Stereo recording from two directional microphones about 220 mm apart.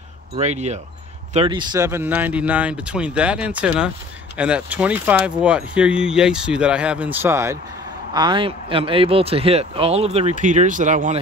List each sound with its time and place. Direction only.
0.4 s speech: 30° right (ahead or behind)